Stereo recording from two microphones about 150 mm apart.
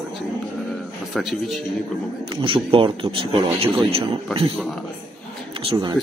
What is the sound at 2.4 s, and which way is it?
Speech, 35° right (ahead or behind).